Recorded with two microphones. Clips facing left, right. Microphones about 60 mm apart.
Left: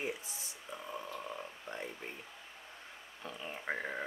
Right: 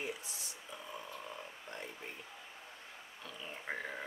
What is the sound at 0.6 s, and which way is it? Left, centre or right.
Frog, centre.